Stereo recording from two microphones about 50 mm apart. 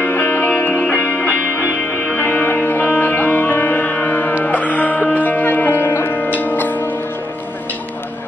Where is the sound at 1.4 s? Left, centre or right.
Left.